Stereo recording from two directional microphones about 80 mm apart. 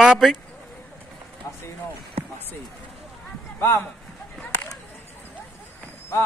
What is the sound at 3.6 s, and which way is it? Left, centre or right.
Speech, left.